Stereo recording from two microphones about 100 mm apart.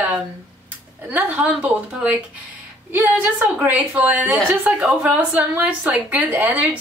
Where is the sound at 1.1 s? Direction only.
15° right (ahead or behind).